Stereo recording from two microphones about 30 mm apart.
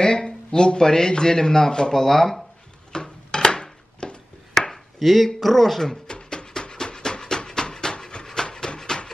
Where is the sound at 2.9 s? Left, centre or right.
Left.